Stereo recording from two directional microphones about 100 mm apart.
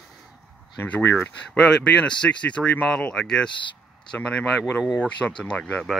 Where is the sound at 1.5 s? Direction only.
10° left (ahead or behind).